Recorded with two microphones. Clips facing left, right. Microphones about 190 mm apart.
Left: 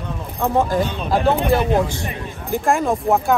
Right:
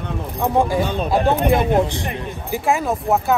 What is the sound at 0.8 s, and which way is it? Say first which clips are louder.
Speech: right 4 dB; 45° right (ahead or behind).